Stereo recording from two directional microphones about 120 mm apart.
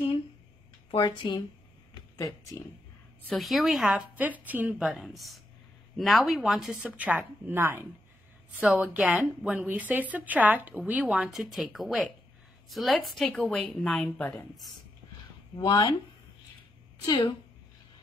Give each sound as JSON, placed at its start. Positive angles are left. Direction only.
{"t": 0.9, "sound": "speech", "side_deg": 40}
{"t": 2.1, "sound": "speech", "side_deg": 30}
{"t": 3.3, "sound": "speech", "side_deg": 0}
{"t": 3.9, "sound": "a woman's voice", "side_deg": -10}
{"t": 17.1, "sound": "speech", "side_deg": 40}